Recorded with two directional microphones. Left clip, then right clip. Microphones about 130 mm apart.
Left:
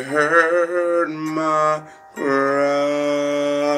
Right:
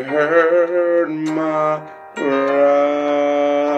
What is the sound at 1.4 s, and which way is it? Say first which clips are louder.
Music: left 1 dB; 5° left (ahead or behind).